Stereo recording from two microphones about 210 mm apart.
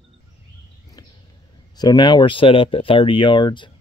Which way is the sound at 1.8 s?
20° left (ahead or behind).